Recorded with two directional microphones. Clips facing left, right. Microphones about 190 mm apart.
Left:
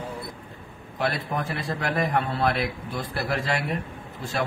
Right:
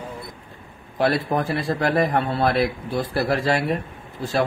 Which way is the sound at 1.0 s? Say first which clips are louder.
Right 7 dB; 35° right (ahead or behind).